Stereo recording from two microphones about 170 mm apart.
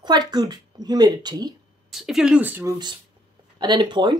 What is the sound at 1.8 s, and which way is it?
Speech, centre (ahead or behind).